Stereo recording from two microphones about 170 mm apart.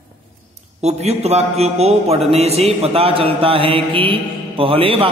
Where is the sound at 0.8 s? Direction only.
40° right (ahead or behind).